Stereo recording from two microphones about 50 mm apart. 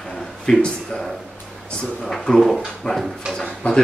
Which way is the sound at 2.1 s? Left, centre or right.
Centre.